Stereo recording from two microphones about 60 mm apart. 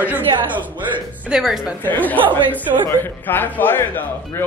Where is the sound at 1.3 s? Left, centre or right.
Centre.